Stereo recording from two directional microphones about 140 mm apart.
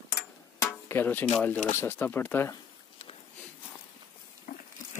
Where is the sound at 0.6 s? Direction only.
15° left (ahead or behind).